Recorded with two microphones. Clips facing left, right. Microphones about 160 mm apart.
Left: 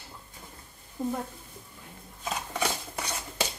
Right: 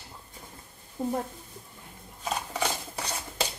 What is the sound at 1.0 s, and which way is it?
Speech, 25° right (ahead or behind).